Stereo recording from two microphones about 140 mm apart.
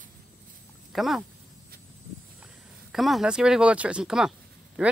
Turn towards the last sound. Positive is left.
turn(degrees=-10)  # may be behind; listen again after turning